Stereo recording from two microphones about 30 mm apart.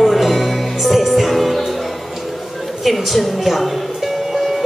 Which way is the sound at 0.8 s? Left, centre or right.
Centre.